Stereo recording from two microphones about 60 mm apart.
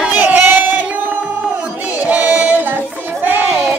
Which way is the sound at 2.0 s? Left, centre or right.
Right.